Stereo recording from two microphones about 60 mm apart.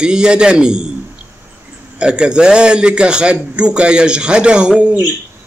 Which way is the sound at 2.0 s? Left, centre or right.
Centre.